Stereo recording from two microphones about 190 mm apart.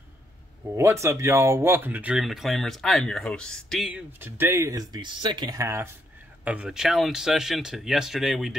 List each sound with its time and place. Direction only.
0.7 s speech: 15° right (ahead or behind)
4.2 s speech: 15° right (ahead or behind)